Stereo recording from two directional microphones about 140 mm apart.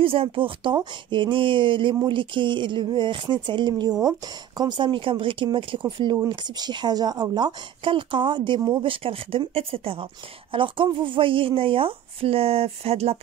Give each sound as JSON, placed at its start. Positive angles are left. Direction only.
{"t": 0.0, "sound": "speech", "side_deg": -40}
{"t": 8.9, "sound": "speech", "side_deg": -40}